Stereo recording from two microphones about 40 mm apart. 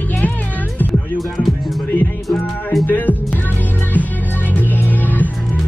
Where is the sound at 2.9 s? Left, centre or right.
Left.